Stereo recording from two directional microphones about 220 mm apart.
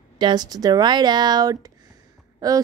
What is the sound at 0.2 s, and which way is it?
Speech, 20° right (ahead or behind).